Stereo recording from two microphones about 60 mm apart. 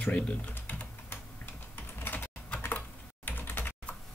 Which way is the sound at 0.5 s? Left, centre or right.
Left.